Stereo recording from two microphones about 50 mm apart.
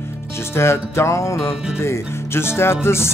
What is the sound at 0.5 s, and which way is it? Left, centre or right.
Music, left.